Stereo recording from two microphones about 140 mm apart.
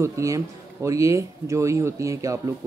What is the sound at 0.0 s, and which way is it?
Speech, 20° right (ahead or behind).